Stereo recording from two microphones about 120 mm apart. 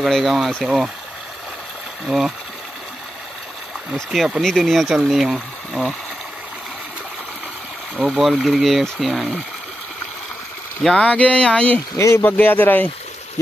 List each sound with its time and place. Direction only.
0.0 s speech: centre (ahead or behind)
2.0 s speech: 5° right (ahead or behind)
3.9 s speech: 5° right (ahead or behind)
7.9 s speech: 5° right (ahead or behind)
10.8 s speech: 5° left (ahead or behind)
12.0 s speech: 25° left (ahead or behind)
12.3 s speech: 15° left (ahead or behind)